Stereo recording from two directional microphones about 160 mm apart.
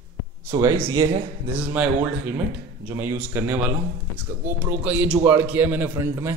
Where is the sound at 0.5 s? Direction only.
15° right (ahead or behind).